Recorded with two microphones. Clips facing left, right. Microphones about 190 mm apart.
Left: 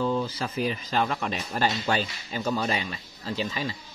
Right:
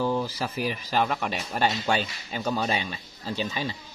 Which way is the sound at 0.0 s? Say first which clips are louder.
Even; 10° right (ahead or behind).